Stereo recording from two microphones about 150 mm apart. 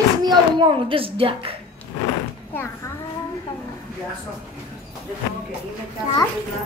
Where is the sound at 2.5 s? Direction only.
15° left (ahead or behind).